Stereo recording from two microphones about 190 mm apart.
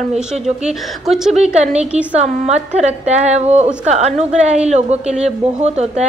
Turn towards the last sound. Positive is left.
turn(degrees=-35)  # may be behind; listen again after turning